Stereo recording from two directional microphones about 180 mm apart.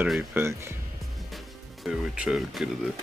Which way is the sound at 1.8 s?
5° right (ahead or behind).